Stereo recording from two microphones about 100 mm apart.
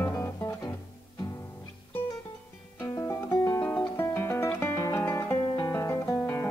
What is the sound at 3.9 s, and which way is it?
Music, 25° left (ahead or behind).